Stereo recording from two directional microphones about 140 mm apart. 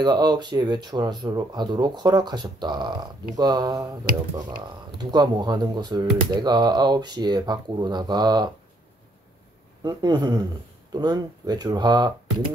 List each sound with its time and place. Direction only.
0.0 s speech: 30° right (ahead or behind)
4.9 s speech: 30° right (ahead or behind)
9.8 s speech: 30° right (ahead or behind)